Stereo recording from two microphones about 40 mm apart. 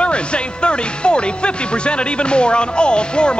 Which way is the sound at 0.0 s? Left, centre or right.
Left.